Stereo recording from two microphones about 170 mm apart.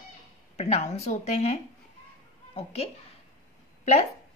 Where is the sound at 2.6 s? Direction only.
35° left (ahead or behind).